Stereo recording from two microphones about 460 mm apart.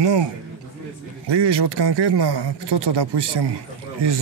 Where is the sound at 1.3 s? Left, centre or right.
Right.